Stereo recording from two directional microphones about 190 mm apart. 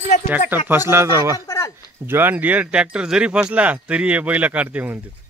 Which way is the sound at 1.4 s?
15° left (ahead or behind).